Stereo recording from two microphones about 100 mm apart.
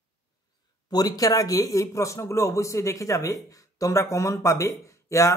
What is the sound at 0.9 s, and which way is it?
Speech, 35° left (ahead or behind).